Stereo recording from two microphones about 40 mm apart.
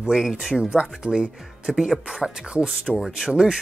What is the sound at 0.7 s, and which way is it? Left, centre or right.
Speech, right.